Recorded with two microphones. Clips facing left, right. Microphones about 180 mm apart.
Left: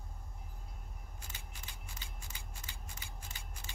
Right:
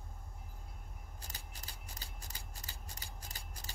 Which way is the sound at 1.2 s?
40° right (ahead or behind).